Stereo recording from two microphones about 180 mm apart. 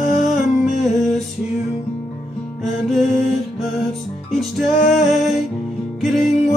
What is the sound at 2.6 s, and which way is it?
Music, centre (ahead or behind).